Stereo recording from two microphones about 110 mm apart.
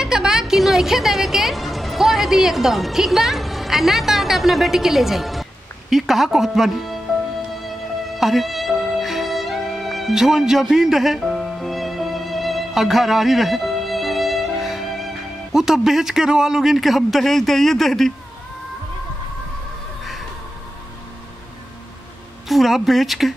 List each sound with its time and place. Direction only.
0.0 s a woman's voice: 5° right (ahead or behind)
8.2 s music: centre (ahead or behind)
22.5 s speech: centre (ahead or behind)